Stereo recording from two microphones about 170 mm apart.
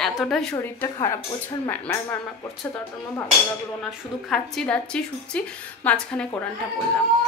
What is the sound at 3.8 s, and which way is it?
A woman's voice, 5° left (ahead or behind).